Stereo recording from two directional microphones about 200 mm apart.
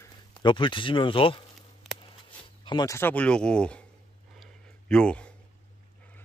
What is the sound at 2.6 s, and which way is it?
Speech, 20° left (ahead or behind).